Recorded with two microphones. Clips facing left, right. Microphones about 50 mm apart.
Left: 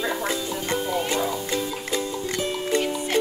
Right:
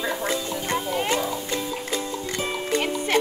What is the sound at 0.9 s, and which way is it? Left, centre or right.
Music, right.